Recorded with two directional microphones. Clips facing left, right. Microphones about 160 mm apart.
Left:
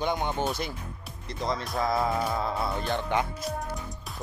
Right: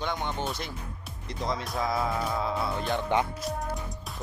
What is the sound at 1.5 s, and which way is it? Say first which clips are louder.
Speech: left 2 dB; 5° right (ahead or behind).